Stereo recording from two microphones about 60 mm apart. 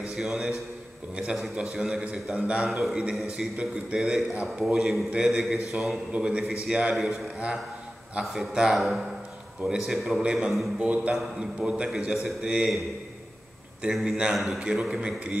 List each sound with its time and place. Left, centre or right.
0.1 s a man's voice: centre
1.7 s a man's voice: centre
2.6 s a man's voice: centre
4.7 s a man's voice: centre
6.1 s a man's voice: centre
7.0 s a man's voice: centre
12.1 s a man's voice: centre
14.0 s a man's voice: centre
14.3 s a man's voice: centre